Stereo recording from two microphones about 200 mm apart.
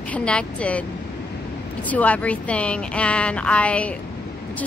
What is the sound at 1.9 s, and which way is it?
A woman's voice, 5° left (ahead or behind).